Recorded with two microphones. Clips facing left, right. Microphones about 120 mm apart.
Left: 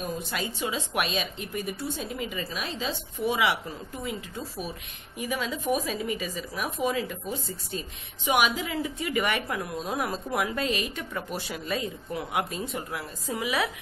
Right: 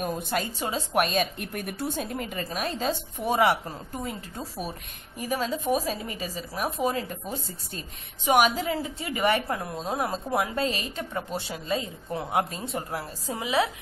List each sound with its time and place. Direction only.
0.0 s a woman's voice: 50° right (ahead or behind); by 13.7 s 30° right (ahead or behind)